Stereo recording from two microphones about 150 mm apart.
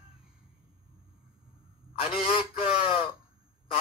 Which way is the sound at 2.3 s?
35° left (ahead or behind).